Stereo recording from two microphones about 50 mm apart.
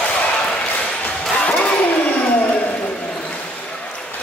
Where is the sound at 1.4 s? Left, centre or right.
Left.